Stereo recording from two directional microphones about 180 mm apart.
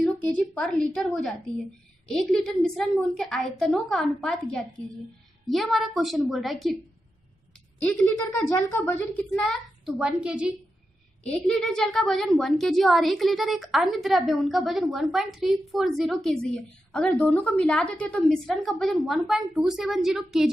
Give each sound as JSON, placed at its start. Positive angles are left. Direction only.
{"t": 0.0, "sound": "a woman's voice", "side_deg": 5}
{"t": 7.8, "sound": "a child's voice", "side_deg": 10}